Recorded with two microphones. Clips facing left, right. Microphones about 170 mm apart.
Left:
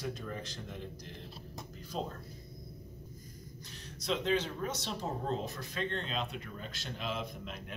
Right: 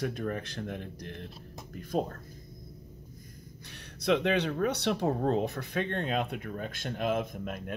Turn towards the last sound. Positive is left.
turn(degrees=-50)  # may be behind; listen again after turning